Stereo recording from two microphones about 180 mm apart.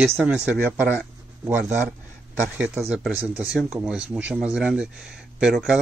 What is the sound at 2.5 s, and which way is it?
Speech, 5° right (ahead or behind).